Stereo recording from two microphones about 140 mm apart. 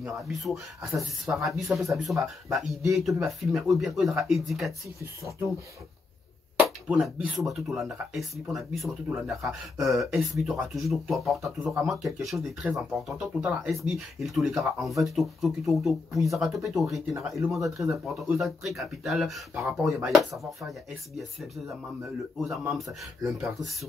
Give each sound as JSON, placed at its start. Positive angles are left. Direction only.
{"t": 0.0, "sound": "speech", "side_deg": 0}
{"t": 6.9, "sound": "speech", "side_deg": 0}
{"t": 23.2, "sound": "speech", "side_deg": -5}